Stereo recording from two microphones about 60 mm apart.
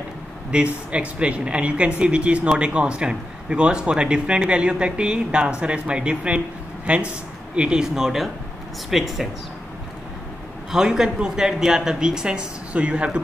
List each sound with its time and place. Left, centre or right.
0.5 s a man's voice: centre
10.7 s a man's voice: centre